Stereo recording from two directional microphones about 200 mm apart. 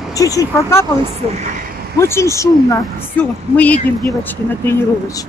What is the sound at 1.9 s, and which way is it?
Speech, 15° left (ahead or behind).